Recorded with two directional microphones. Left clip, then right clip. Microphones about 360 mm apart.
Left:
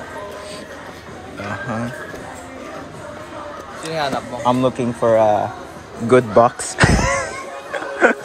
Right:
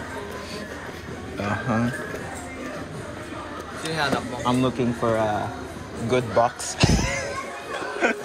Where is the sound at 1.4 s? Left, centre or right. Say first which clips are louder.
Even; centre.